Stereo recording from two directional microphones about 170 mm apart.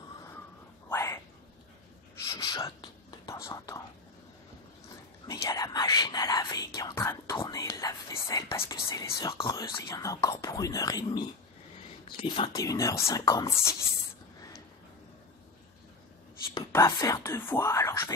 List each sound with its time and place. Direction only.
0.8 s a sound: 15° left (ahead or behind)
2.2 s whispering: 20° left (ahead or behind)
3.4 s speech: 20° left (ahead or behind)
5.2 s whispering: 20° left (ahead or behind)
9.5 s speech: 20° left (ahead or behind)
12.5 s speech: 20° left (ahead or behind)
16.5 s speech: 20° left (ahead or behind)